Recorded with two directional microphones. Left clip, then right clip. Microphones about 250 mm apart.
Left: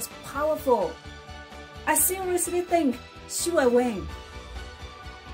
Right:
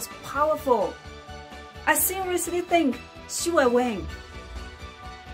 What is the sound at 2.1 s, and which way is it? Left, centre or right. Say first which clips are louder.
A woman's voice: even; centre.